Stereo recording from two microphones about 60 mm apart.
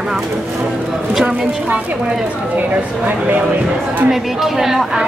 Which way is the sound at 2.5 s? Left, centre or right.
Right.